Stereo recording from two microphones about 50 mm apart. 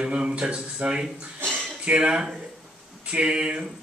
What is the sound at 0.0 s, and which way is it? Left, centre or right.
A man's voice, centre.